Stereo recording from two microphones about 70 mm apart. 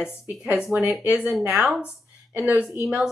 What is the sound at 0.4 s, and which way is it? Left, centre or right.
Speech, centre.